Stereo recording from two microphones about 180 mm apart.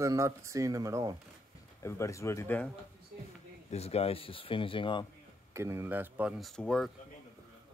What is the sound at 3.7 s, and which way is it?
Speech, 35° left (ahead or behind).